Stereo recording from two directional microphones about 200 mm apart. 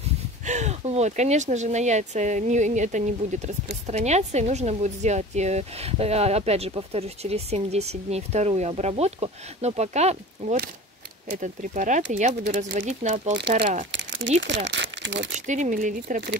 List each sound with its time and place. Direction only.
0.5 s speech: 35° right (ahead or behind)
13.9 s crumpling: 65° right (ahead or behind)
14.4 s speech: 65° right (ahead or behind)
15.3 s speech: 35° right (ahead or behind)